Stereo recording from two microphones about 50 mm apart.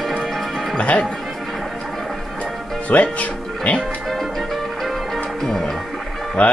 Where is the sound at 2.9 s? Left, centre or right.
Left.